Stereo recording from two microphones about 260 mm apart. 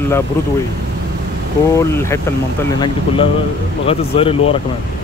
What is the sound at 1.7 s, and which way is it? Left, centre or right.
Speech, centre.